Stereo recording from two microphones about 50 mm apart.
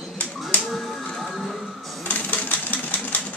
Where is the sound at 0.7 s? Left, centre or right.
Centre.